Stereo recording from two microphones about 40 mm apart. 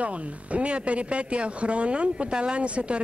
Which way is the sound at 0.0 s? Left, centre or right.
Right.